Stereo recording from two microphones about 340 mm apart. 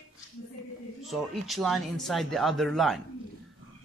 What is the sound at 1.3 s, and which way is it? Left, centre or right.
A man's voice, centre.